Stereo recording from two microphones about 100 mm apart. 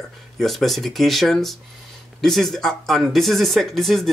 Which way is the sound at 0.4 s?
Centre (ahead or behind).